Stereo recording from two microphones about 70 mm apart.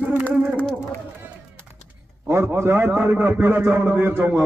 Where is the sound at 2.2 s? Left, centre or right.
Right.